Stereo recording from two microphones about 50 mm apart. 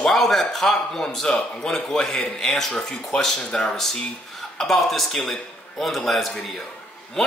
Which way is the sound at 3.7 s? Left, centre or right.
Centre.